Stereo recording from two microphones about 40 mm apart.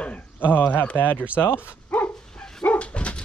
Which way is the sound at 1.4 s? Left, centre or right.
Left.